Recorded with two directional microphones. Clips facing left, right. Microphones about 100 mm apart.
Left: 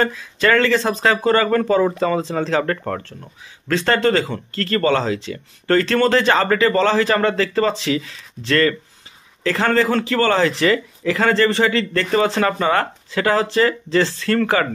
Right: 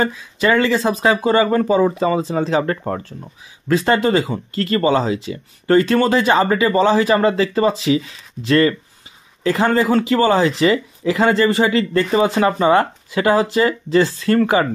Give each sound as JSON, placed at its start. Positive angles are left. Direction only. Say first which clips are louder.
{"t": 0.0, "sound": "speech", "louder": "even", "side_deg": -5}